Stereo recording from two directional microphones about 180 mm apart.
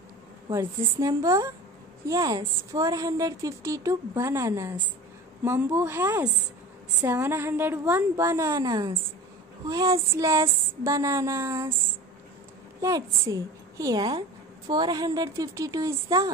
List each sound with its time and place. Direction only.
0.5 s a woman's voice: 15° right (ahead or behind)
12.8 s a woman's voice: 20° right (ahead or behind)